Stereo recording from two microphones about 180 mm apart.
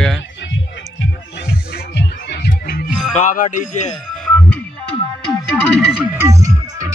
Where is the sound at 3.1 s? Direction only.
45° left (ahead or behind).